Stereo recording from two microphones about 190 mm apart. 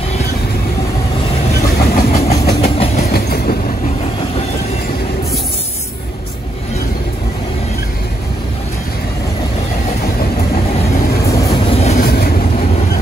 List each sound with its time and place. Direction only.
1.8 s vehicle: 45° left (ahead or behind)
2.6 s train: 35° left (ahead or behind)
3.1 s train: 55° left (ahead or behind)
11.2 s train: 15° left (ahead or behind)
11.5 s vehicle: 30° left (ahead or behind)
12.0 s vehicle: 50° left (ahead or behind)